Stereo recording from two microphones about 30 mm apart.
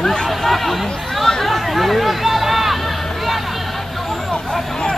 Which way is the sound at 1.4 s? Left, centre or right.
Centre.